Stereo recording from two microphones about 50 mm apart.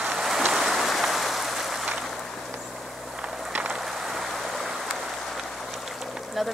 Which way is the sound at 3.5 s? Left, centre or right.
Right.